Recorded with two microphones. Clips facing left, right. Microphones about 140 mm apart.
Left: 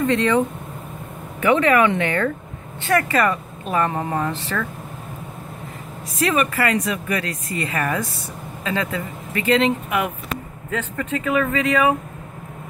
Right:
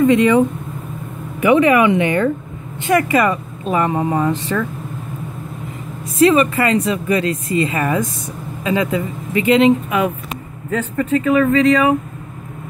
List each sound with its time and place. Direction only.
0.0 s speech: 10° right (ahead or behind)
1.4 s speech: 15° right (ahead or behind)
6.2 s speech: 25° right (ahead or behind)
10.7 s speech: 5° right (ahead or behind)